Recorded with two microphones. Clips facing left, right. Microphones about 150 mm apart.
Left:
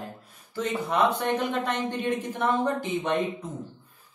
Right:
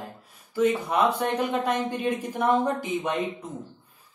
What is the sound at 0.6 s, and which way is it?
Speech, 10° right (ahead or behind).